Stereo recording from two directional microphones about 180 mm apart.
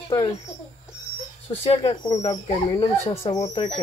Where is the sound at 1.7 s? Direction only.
30° left (ahead or behind).